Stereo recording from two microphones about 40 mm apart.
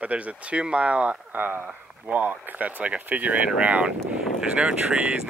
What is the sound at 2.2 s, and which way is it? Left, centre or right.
Speech, right.